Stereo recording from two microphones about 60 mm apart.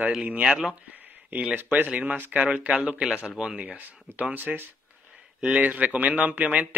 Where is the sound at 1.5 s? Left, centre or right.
Right; by 3.6 s centre.